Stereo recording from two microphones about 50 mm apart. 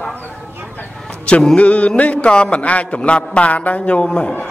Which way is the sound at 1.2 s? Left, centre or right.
Centre.